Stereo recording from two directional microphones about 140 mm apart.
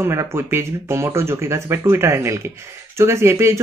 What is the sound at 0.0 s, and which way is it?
Speech, 20° right (ahead or behind).